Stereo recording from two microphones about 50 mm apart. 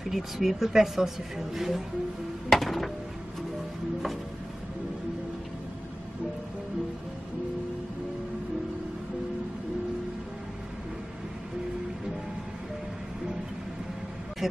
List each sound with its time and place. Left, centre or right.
0.0 s a woman's voice: centre
2.5 s a sound: centre
14.4 s vehicle: centre